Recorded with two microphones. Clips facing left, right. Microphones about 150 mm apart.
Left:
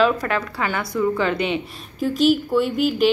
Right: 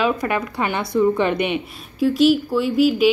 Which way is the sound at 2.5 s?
5° right (ahead or behind).